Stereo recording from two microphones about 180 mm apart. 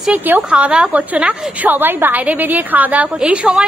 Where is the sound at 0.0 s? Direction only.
5° right (ahead or behind).